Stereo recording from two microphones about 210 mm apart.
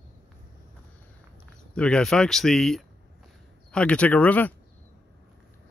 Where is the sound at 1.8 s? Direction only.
5° left (ahead or behind).